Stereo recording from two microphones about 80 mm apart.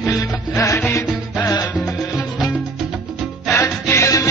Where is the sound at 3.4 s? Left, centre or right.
Left.